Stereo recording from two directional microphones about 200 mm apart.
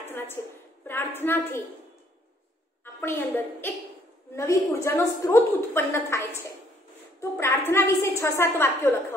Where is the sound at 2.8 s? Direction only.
10° left (ahead or behind).